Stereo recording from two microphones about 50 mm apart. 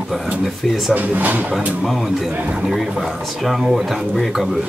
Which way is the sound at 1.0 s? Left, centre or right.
Right.